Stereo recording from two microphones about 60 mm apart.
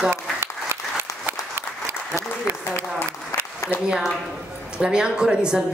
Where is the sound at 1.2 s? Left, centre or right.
Right.